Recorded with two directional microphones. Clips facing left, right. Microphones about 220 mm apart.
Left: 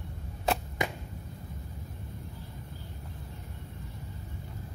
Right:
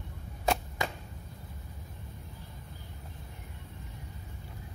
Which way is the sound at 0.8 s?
20° left (ahead or behind).